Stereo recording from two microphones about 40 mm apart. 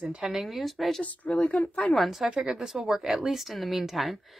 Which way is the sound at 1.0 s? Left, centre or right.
Left.